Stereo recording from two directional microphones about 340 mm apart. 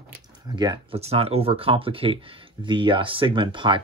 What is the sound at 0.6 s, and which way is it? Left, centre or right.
Speech, centre.